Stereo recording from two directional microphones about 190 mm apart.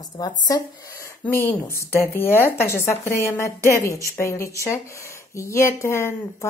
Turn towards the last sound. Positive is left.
turn(degrees=15)  # may be behind; listen again after turning